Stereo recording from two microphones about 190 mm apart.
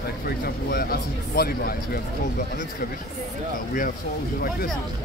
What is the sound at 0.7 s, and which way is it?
Speech, 50° left (ahead or behind).